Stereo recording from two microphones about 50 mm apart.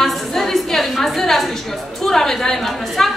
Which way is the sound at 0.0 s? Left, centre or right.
Centre.